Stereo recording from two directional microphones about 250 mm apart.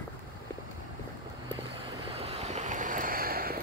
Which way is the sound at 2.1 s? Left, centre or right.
Right.